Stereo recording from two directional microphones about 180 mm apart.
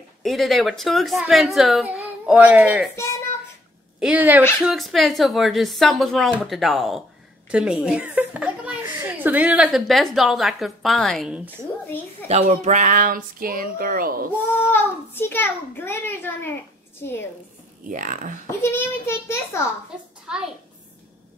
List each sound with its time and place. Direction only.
0.2 s a woman's voice: centre (ahead or behind)
4.0 s a woman's voice: 10° right (ahead or behind)
12.3 s speech: 35° right (ahead or behind); by 14.2 s 55° right (ahead or behind)
14.7 s a child's voice: 10° left (ahead or behind)
17.8 s speech: 50° right (ahead or behind)
18.6 s a child's voice: 15° left (ahead or behind)
20.3 s a child's voice: 5° right (ahead or behind)